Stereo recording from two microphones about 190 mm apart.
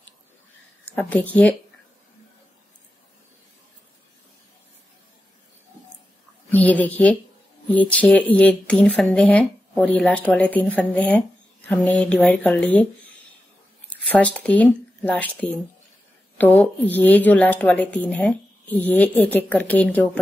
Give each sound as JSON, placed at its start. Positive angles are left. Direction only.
{"t": 0.9, "sound": "speech", "side_deg": 10}
{"t": 6.5, "sound": "a woman's voice", "side_deg": 10}
{"t": 13.9, "sound": "speech", "side_deg": 10}